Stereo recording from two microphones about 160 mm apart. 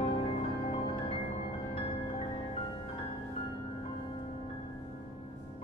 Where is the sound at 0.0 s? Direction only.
40° left (ahead or behind).